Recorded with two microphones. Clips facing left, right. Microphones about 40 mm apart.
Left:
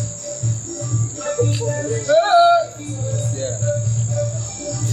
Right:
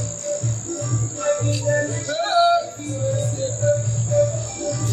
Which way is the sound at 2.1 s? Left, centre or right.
Centre.